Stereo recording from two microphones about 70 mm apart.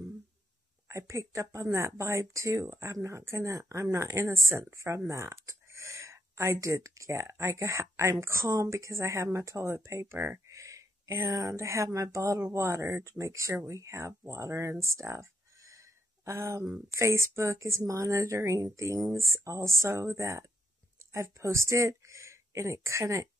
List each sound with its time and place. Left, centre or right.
0.8 s speech: right